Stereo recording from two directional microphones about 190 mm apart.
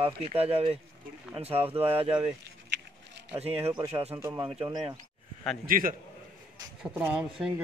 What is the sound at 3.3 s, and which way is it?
Speech, 35° right (ahead or behind).